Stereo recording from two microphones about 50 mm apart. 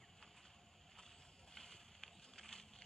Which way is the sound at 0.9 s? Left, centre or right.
Centre.